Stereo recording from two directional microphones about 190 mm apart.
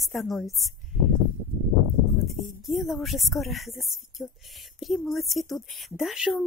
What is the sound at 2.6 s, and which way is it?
A woman's voice, centre (ahead or behind).